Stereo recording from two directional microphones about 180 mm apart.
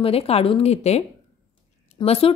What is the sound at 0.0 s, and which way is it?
Speech, 35° left (ahead or behind).